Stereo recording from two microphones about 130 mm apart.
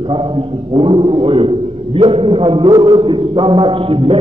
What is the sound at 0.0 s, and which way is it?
A man's voice, 40° right (ahead or behind).